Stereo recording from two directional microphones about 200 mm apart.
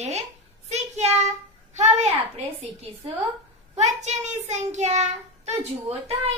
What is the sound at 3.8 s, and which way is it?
A child's voice, 35° right (ahead or behind).